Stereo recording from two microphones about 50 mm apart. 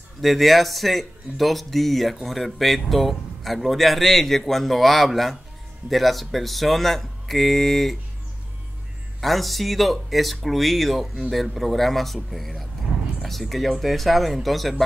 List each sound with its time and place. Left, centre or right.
0.2 s speech: centre
9.2 s speech: centre